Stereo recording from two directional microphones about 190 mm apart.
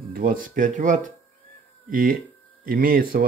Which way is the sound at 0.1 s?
50° right (ahead or behind).